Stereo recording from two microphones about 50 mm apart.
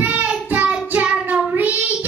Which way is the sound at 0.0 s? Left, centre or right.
Right.